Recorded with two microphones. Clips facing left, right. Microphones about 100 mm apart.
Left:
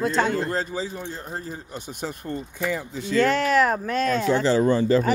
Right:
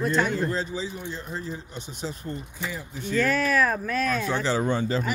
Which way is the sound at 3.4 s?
25° left (ahead or behind).